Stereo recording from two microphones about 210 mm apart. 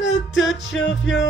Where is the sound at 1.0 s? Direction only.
60° left (ahead or behind).